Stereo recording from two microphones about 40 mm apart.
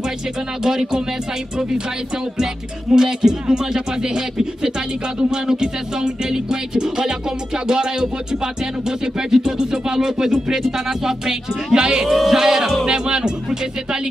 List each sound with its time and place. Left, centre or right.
0.7 s speech: centre
2.3 s speech: centre
12.1 s speech: centre
12.8 s music: right